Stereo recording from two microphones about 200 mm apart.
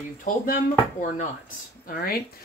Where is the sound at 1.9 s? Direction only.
45° left (ahead or behind).